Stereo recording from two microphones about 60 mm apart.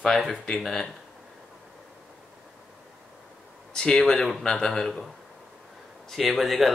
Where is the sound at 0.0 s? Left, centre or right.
Centre.